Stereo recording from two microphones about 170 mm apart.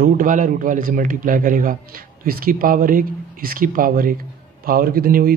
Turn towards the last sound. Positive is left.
turn(degrees=-60)  # may be behind; listen again after turning